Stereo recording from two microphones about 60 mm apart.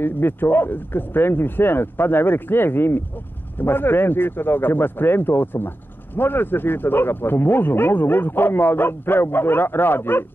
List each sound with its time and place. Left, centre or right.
0.0 s a man's voice: left